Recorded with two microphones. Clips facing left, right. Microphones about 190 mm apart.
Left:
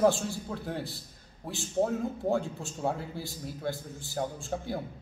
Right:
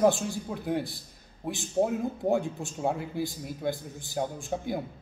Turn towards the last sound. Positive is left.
turn(degrees=-15)  # may be behind; listen again after turning